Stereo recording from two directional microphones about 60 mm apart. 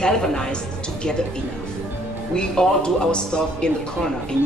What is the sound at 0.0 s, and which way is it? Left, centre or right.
Speech, centre.